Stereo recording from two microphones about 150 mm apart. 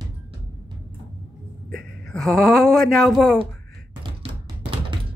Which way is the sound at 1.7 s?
Centre (ahead or behind).